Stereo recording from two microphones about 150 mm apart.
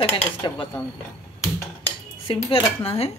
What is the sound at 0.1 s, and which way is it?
Dishes, 35° left (ahead or behind).